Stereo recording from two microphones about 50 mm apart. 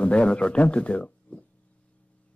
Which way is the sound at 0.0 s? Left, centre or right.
Left.